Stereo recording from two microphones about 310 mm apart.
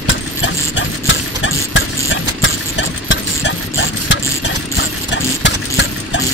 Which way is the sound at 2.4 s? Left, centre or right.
Left.